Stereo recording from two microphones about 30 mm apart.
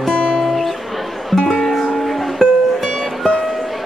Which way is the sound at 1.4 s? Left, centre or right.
Centre.